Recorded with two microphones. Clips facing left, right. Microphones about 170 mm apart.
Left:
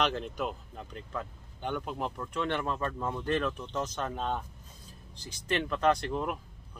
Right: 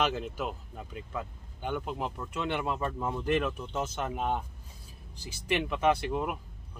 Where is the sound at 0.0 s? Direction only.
5° right (ahead or behind).